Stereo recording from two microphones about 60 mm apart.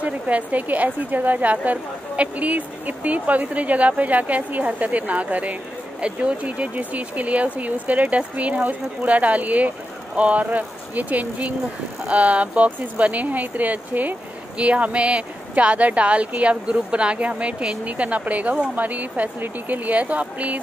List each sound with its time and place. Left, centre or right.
0.0 s a woman's voice: right